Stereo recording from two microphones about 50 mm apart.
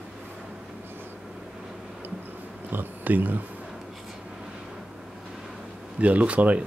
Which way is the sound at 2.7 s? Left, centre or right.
Right.